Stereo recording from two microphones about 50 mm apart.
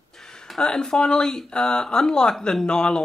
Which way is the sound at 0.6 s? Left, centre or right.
Centre.